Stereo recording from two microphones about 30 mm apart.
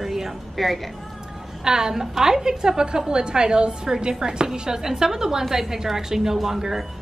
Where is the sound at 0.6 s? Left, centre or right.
Centre.